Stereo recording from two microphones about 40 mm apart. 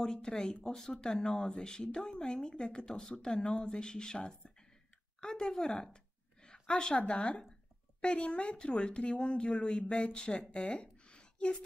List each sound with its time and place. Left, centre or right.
0.0 s a woman's voice: centre